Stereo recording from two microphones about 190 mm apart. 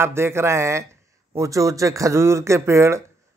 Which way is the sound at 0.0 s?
15° right (ahead or behind).